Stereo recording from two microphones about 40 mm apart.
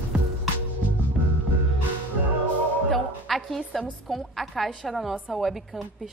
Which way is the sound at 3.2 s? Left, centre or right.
Centre.